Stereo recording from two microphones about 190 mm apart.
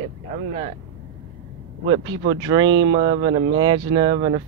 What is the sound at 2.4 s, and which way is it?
Speech, 20° right (ahead or behind).